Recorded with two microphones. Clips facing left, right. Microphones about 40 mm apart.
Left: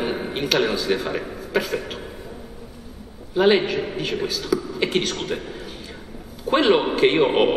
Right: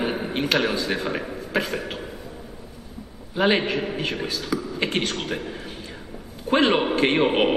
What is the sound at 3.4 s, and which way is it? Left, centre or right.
A man's voice, right.